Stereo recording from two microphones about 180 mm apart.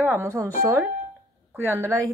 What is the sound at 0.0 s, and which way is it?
Speech, 15° right (ahead or behind).